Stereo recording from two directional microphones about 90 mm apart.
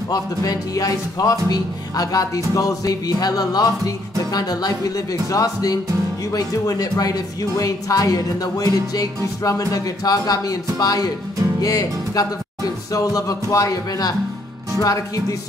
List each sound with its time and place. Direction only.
0.1 s speech: 40° left (ahead or behind)